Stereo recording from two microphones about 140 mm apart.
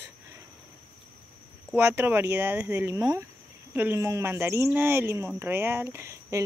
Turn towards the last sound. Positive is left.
turn(degrees=-20)  # may be behind; listen again after turning